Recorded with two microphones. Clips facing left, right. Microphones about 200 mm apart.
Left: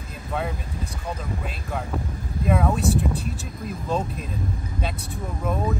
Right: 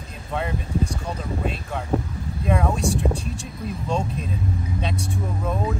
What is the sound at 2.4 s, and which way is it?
Speech, 5° left (ahead or behind).